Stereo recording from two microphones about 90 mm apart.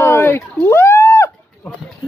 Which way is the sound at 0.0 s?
25° left (ahead or behind).